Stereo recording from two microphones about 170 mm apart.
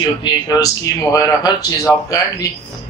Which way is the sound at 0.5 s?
20° left (ahead or behind).